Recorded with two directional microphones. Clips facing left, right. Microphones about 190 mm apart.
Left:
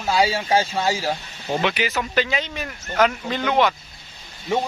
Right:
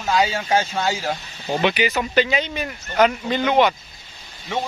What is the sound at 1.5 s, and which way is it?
Speech, centre (ahead or behind).